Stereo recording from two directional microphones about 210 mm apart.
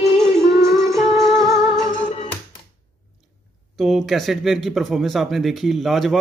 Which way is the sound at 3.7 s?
Centre (ahead or behind).